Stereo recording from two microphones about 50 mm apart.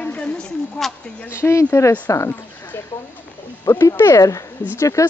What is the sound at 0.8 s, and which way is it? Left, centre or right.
Speech, left.